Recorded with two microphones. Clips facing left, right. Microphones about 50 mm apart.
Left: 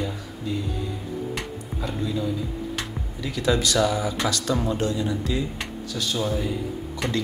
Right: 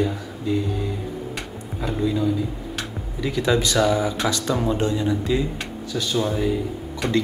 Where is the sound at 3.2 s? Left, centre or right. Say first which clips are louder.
Right 3 dB; right.